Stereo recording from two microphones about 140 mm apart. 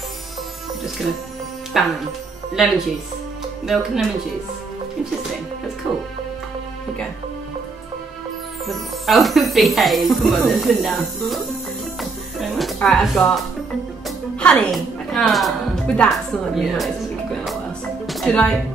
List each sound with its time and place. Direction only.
1.7 s speech: centre (ahead or behind)
5.9 s speech: 5° right (ahead or behind)
8.6 s speech: centre (ahead or behind)
12.0 s music: centre (ahead or behind)
12.8 s a woman's voice: 5° left (ahead or behind)
18.0 s music: 5° left (ahead or behind)